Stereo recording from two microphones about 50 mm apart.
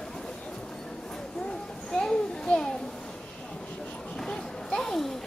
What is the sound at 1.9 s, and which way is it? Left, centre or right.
Children playing, centre.